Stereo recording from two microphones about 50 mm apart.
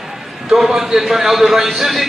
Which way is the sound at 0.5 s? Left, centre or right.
Centre.